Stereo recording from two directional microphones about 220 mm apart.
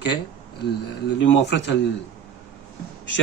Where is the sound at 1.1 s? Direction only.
55° left (ahead or behind).